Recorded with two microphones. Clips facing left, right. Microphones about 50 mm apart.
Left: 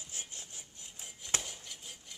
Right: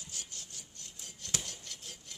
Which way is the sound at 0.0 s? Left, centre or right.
Left.